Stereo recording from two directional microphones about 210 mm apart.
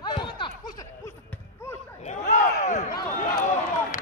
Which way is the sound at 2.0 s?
35° left (ahead or behind).